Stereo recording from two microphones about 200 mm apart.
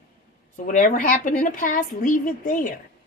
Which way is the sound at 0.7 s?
40° left (ahead or behind).